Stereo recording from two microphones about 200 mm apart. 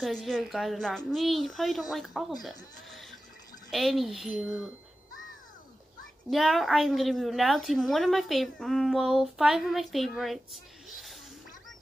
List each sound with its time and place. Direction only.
0.0 s a woman's voice: centre (ahead or behind)
2.9 s a sound: centre (ahead or behind)
3.7 s a woman's voice: centre (ahead or behind)
6.3 s a woman's voice: centre (ahead or behind)
10.9 s music: centre (ahead or behind)